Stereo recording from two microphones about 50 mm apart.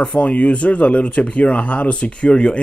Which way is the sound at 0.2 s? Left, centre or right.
Left.